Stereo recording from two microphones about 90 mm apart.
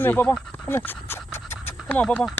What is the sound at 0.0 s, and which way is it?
Speech, 20° left (ahead or behind).